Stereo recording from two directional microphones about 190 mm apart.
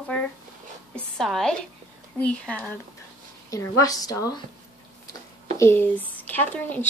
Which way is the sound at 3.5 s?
20° left (ahead or behind).